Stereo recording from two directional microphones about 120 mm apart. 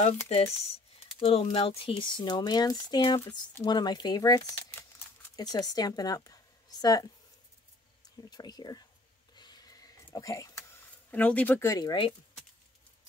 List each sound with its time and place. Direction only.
0.3 s speech: 60° left (ahead or behind); by 7.1 s 30° left (ahead or behind)
8.3 s speech: 35° left (ahead or behind)
9.3 s a sound: 35° left (ahead or behind)
11.1 s speech: 15° left (ahead or behind)
11.7 s speech: 40° left (ahead or behind)